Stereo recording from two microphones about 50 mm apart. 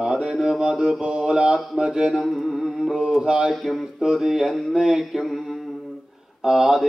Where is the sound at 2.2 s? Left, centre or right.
Centre.